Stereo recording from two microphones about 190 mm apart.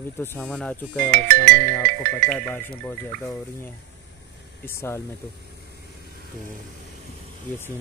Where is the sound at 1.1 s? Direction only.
45° right (ahead or behind).